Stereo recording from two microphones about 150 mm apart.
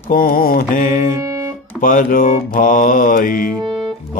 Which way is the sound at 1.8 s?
65° left (ahead or behind).